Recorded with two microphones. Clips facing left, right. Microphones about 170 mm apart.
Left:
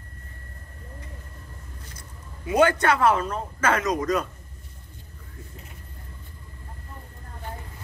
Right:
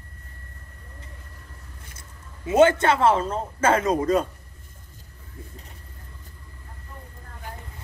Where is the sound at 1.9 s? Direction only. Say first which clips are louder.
Left 2 dB; 25° right (ahead or behind).